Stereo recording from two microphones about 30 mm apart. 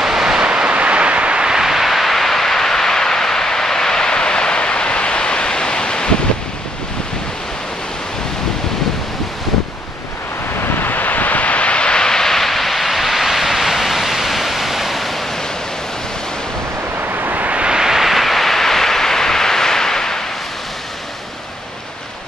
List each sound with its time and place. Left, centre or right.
0.0 s vehicle: centre
0.4 s vehicle: right
1.4 s a sound: right
1.7 s a sound: centre; by 6.1 s left
10.9 s wind noise: left
12.1 s vehicle: centre
17.0 s vehicle: right
17.6 s vehicle: right
17.9 s vehicle: centre